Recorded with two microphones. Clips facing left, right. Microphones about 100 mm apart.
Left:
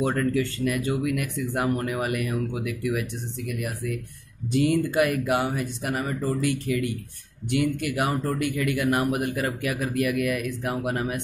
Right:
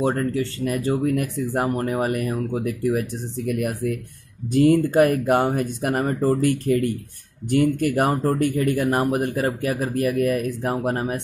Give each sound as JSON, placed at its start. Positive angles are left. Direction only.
{"t": 0.0, "sound": "speech", "side_deg": -30}